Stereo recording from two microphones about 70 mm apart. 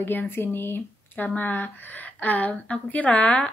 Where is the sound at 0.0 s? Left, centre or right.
Left.